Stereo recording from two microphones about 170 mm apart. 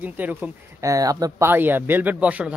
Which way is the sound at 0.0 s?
10° right (ahead or behind).